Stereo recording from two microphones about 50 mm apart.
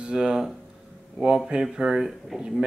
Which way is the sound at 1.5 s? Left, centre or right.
Centre.